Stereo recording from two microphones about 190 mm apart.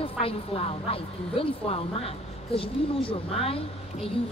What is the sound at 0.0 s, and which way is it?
A woman's voice, 30° left (ahead or behind).